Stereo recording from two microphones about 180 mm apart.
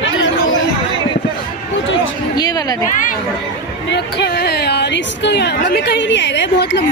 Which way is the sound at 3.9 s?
70° left (ahead or behind).